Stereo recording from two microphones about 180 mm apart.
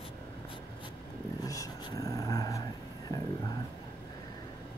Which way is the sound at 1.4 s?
20° left (ahead or behind).